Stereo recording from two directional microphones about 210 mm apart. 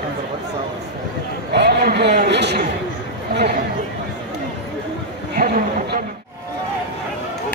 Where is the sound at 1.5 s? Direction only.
50° right (ahead or behind).